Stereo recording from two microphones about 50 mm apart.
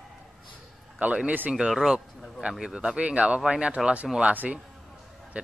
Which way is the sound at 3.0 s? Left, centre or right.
Right.